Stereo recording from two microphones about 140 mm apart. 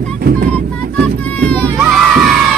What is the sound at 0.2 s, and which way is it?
Music, 90° right.